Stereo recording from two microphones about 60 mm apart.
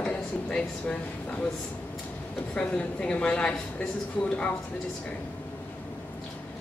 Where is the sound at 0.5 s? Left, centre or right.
Centre.